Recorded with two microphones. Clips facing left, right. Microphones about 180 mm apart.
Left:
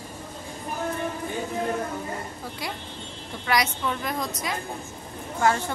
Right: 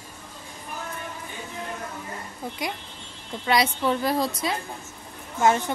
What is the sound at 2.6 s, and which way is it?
Speech, 20° right (ahead or behind).